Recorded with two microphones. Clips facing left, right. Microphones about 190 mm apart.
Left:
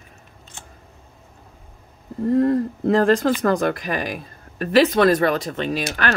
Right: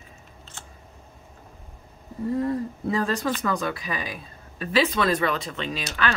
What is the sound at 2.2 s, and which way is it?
Speech, 65° left (ahead or behind).